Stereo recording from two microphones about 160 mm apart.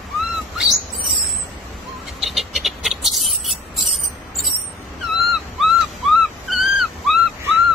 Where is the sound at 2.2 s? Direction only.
Centre (ahead or behind).